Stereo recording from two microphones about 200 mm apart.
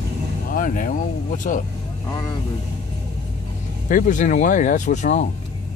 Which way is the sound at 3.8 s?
40° left (ahead or behind).